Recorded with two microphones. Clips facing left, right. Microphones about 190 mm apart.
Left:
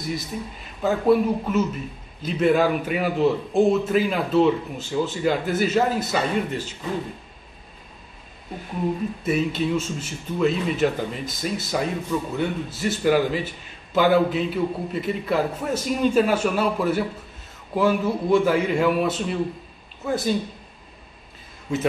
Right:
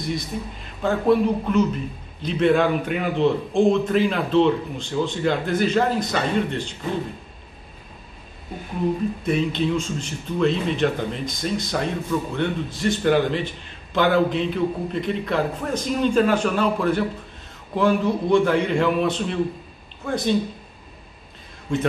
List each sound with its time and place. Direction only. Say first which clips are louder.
0.0 s a man's voice: right 2 dB; 5° left (ahead or behind)
9.2 s a man's voice: left 1 dB; 5° left (ahead or behind)
21.7 s a man's voice: right 2 dB; 5° left (ahead or behind)